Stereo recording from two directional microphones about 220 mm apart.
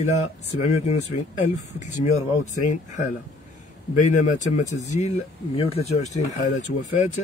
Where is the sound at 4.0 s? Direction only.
35° left (ahead or behind).